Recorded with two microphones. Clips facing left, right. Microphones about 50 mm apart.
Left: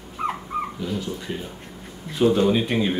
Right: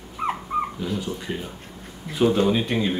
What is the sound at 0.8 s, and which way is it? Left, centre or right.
Speech, centre.